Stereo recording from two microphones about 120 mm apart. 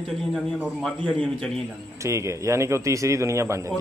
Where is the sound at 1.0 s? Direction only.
5° left (ahead or behind).